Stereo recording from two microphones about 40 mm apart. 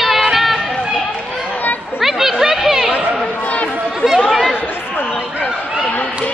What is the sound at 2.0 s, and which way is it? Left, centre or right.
Chatter, centre.